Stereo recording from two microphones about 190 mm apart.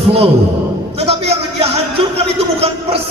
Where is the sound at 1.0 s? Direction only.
30° right (ahead or behind).